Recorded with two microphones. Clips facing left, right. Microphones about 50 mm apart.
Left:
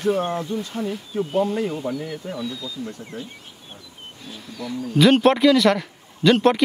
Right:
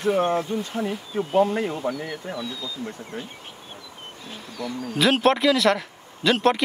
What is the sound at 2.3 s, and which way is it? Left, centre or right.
Speech, centre.